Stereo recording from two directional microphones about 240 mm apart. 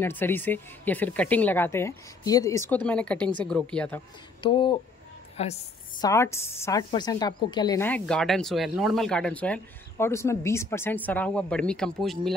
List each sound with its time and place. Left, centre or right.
0.0 s a woman's voice: centre
4.4 s a woman's voice: left
6.0 s a woman's voice: centre